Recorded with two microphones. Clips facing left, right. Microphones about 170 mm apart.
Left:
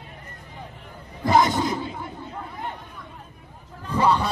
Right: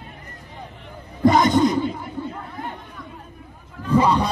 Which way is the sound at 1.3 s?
5° left (ahead or behind).